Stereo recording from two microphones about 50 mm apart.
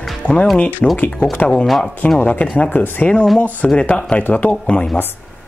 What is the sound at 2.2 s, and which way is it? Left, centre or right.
Speech, left.